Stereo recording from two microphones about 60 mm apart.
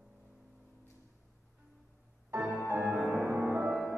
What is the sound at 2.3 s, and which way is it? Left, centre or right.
Music, right.